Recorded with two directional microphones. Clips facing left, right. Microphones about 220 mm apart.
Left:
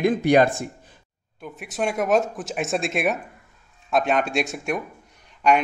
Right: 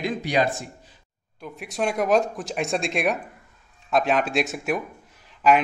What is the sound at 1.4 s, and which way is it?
A man's voice, centre (ahead or behind).